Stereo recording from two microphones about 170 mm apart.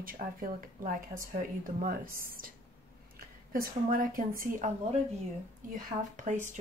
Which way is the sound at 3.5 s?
55° right (ahead or behind).